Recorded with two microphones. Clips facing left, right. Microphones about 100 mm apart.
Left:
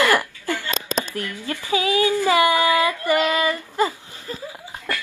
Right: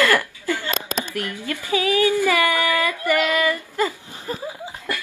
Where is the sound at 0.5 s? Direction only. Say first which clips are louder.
Left 2 dB; 20° right (ahead or behind).